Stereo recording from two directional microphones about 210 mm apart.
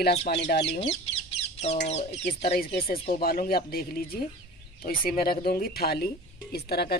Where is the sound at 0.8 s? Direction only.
30° left (ahead or behind).